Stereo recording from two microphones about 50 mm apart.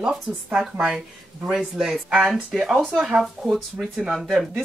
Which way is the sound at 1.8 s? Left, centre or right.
Centre.